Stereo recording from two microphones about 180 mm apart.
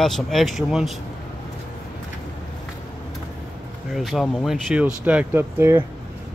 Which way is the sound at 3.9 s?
Centre (ahead or behind).